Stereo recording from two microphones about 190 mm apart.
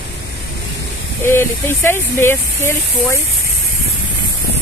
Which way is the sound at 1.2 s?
10° left (ahead or behind).